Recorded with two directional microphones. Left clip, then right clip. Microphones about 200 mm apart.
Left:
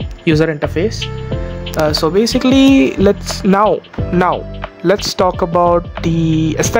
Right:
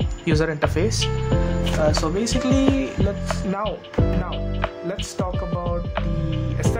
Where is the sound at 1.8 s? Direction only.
40° left (ahead or behind).